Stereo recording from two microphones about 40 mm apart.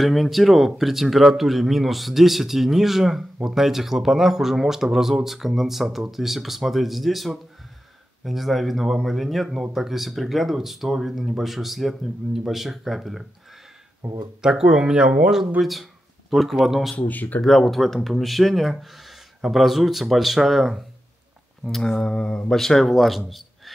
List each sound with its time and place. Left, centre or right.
0.0 s speech: centre
14.0 s speech: right
14.4 s speech: centre
15.6 s speech: centre
16.9 s speech: left
17.4 s speech: centre
21.6 s a man's voice: centre